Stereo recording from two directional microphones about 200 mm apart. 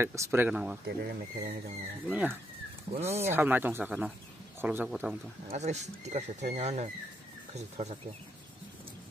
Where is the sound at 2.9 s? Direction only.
30° right (ahead or behind).